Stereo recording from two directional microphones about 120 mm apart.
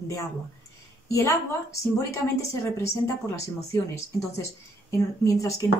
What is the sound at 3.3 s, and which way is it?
Speech, 25° left (ahead or behind).